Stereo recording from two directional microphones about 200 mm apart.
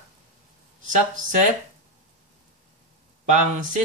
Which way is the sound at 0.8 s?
40° right (ahead or behind).